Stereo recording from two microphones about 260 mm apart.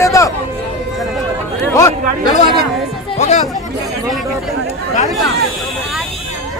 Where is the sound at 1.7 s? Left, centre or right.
Centre.